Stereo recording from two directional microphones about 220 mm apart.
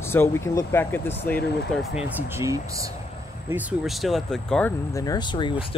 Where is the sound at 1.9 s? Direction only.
5° right (ahead or behind).